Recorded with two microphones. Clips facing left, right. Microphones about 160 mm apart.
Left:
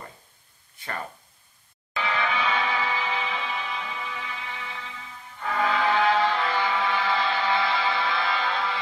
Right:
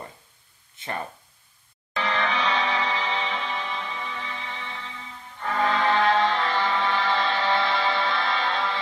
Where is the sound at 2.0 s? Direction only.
5° left (ahead or behind).